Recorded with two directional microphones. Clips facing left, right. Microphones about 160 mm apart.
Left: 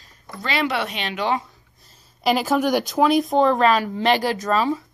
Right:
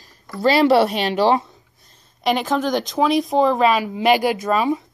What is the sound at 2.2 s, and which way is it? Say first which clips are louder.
Speech: even; 5° left (ahead or behind).